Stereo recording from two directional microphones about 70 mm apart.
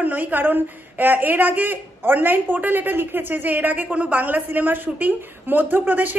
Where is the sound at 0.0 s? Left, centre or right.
Right.